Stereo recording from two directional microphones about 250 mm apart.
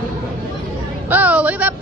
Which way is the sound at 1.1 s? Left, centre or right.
Centre.